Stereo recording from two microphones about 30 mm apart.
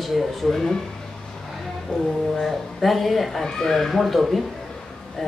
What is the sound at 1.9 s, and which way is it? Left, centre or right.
Speech, left.